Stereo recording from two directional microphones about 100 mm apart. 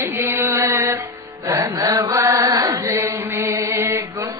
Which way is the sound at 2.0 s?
25° right (ahead or behind).